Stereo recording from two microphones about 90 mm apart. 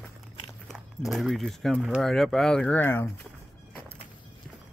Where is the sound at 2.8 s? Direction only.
25° left (ahead or behind).